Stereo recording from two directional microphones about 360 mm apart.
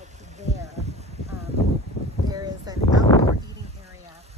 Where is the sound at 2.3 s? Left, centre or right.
Centre.